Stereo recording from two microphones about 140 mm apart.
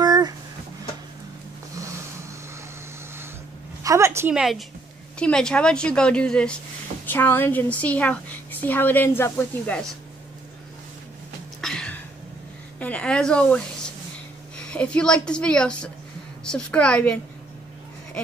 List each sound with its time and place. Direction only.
0.0 s a sound: 30° right (ahead or behind)
3.8 s a woman's voice: 20° right (ahead or behind)
4.3 s a woman's voice: 5° right (ahead or behind); by 9.8 s 15° left (ahead or behind)
11.6 s a sound: 5° left (ahead or behind)
12.7 s a woman's voice: 10° left (ahead or behind)
14.6 s a woman's voice: 5° left (ahead or behind)